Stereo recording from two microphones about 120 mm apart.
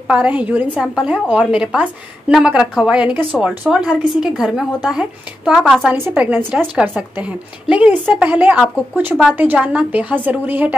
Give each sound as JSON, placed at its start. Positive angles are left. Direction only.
{"t": 0.1, "sound": "a woman's voice", "side_deg": -10}
{"t": 5.9, "sound": "a woman's voice", "side_deg": -20}